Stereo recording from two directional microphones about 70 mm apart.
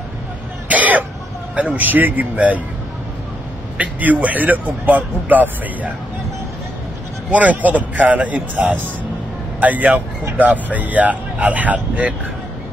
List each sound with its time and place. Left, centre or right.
0.7 s cough: right
1.5 s a man's voice: centre
3.7 s a man's voice: right
7.2 s a man's voice: right